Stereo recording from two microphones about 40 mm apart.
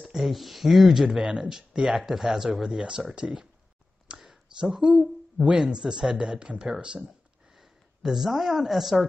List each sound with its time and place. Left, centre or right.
0.0 s speech: centre
2.7 s speech: right
4.1 s a sound: centre
5.7 s speech: centre
6.8 s a sound: right
8.0 s speech: centre